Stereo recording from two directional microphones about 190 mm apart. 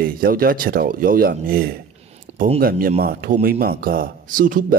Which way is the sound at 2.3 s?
35° right (ahead or behind).